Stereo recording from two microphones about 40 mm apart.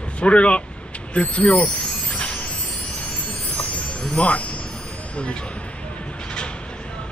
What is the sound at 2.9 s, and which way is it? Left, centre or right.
Vehicle, left.